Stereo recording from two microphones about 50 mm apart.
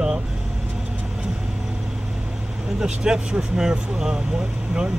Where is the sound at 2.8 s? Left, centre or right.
Centre.